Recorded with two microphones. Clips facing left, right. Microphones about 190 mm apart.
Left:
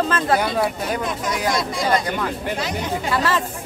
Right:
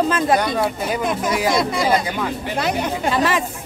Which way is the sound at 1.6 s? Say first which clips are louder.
Right 4 dB; 60° right (ahead or behind).